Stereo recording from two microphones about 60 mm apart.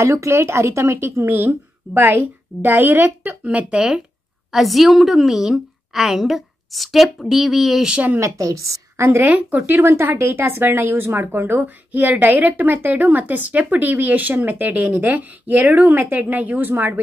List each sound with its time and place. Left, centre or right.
0.0 s a woman's voice: right
3.4 s speech: centre
4.5 s a woman's voice: centre
8.2 s a woman's voice: right
9.0 s a woman's voice: right